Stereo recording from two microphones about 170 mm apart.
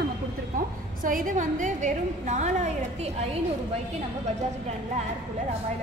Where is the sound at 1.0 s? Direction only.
55° right (ahead or behind).